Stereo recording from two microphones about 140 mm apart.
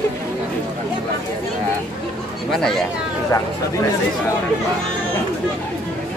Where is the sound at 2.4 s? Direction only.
5° left (ahead or behind).